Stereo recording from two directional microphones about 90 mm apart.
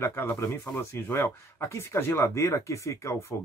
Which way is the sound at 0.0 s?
25° left (ahead or behind).